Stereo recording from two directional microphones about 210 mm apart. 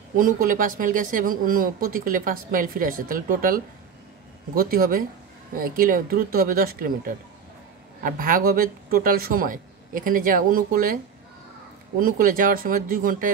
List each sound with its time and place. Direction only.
0.2 s speech: 40° right (ahead or behind)
8.0 s speech: 40° right (ahead or behind)
12.0 s speech: 40° right (ahead or behind)